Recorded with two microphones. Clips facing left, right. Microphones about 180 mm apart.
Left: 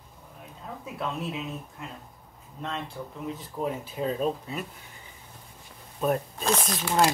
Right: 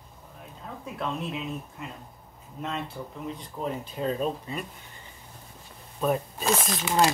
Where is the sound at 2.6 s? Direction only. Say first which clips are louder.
Right 1 dB; 5° right (ahead or behind).